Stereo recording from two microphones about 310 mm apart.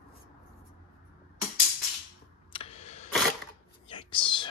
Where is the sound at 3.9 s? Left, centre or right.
Centre.